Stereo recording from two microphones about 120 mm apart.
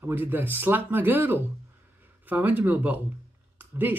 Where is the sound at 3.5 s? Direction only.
15° right (ahead or behind).